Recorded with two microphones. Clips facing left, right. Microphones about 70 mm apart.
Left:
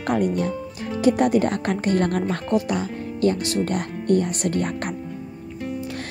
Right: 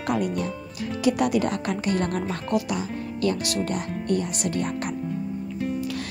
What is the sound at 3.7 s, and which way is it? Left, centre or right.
Speech, left.